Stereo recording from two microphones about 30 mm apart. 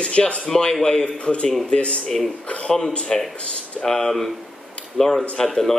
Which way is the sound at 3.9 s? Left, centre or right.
Centre.